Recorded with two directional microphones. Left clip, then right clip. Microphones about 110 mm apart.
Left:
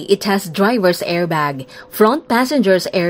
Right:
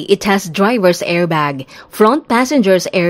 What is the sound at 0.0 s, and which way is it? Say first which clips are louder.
A woman's voice: right 3 dB; 25° right (ahead or behind).